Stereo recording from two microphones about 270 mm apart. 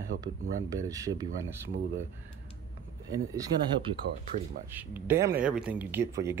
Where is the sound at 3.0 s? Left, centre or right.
Centre.